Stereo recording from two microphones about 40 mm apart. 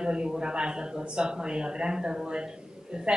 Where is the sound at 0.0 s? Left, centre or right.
Right.